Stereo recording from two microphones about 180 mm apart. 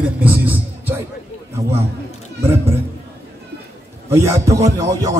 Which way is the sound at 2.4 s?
15° right (ahead or behind).